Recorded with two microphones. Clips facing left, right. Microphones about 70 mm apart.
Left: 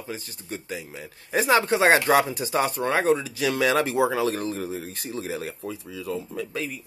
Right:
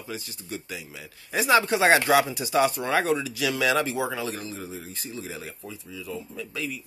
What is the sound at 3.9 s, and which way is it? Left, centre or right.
Speech, left.